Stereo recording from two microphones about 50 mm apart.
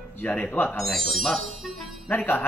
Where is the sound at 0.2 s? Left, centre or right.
Left.